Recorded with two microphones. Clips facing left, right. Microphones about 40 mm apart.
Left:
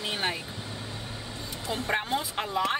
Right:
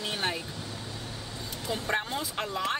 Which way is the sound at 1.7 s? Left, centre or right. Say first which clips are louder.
Left 2 dB; centre.